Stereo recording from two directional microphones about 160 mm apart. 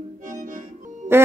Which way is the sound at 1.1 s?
15° right (ahead or behind).